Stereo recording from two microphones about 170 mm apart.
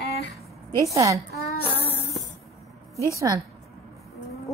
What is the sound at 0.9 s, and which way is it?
Speech, 20° right (ahead or behind).